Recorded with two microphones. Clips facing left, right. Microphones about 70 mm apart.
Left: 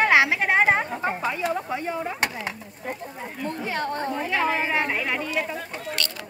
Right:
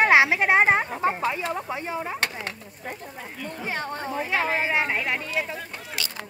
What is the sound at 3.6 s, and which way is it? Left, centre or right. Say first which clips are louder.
A woman's voice: left 2 dB; centre.